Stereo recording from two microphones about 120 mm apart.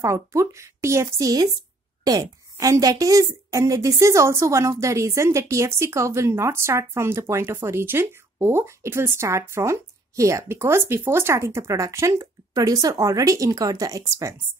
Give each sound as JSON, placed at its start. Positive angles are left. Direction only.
{"t": 0.0, "sound": "a woman's voice", "side_deg": -25}